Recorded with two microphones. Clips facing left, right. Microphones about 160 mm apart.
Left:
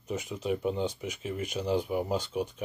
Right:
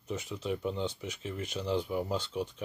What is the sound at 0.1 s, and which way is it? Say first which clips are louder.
Speech: left 3 dB; 15° left (ahead or behind).